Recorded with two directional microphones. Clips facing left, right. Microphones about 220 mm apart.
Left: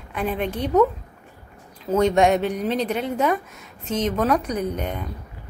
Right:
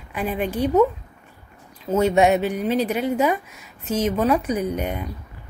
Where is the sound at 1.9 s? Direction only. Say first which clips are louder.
Even; 5° right (ahead or behind).